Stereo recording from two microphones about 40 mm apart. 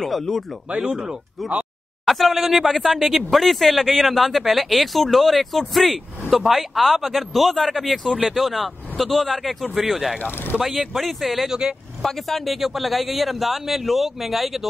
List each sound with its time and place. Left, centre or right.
0.0 s speech: centre
0.7 s speech: centre
2.0 s speech: centre
10.6 s speech: centre
11.0 s speech: centre